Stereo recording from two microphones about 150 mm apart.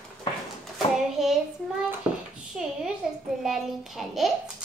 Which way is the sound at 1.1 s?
Centre (ahead or behind).